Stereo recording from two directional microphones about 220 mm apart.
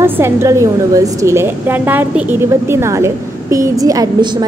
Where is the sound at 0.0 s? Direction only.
10° right (ahead or behind).